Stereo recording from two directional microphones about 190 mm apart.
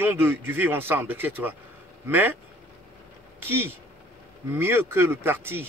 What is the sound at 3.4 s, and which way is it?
A man's voice, 10° right (ahead or behind).